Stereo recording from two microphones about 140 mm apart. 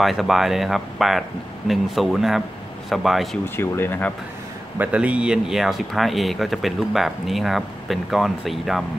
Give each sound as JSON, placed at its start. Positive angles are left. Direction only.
{"t": 0.0, "sound": "speech", "side_deg": 0}
{"t": 3.5, "sound": "speech", "side_deg": 15}
{"t": 4.7, "sound": "speech", "side_deg": -10}